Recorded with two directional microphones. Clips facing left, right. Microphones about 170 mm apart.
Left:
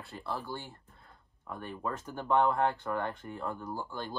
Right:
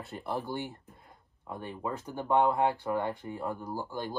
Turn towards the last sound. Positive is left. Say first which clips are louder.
# right 2 dB
turn(degrees=-15)  # may be behind; listen again after turning